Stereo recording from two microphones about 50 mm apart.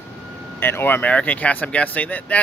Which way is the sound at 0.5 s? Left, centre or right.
Left.